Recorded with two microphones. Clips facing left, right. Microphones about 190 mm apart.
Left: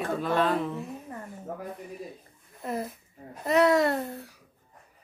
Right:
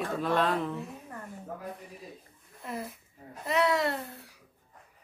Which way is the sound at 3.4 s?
45° left (ahead or behind).